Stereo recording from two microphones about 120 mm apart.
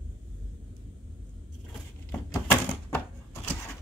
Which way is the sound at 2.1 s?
15° left (ahead or behind).